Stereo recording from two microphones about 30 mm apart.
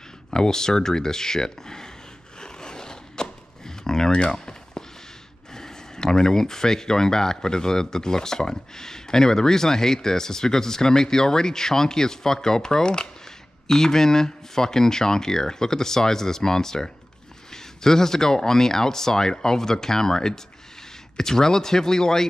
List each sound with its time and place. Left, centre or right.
0.3 s speech: left
2.4 s zipper: left
4.2 s speech: left
5.5 s speech: centre